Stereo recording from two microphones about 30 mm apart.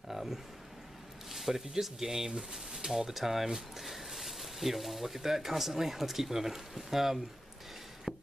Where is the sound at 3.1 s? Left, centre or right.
Centre.